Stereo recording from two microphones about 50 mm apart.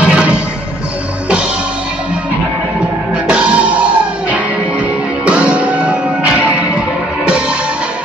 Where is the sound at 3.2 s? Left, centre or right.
Right.